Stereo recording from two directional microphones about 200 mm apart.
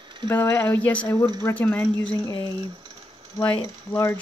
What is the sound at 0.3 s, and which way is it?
Speech, 10° left (ahead or behind).